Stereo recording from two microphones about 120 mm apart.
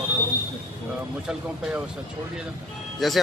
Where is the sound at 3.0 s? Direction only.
Centre (ahead or behind).